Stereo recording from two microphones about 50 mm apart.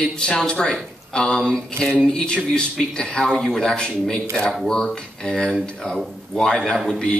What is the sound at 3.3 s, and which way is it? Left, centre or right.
Speech, centre.